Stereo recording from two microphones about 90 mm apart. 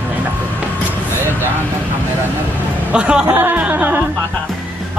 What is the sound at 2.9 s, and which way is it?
A man's voice, 10° right (ahead or behind).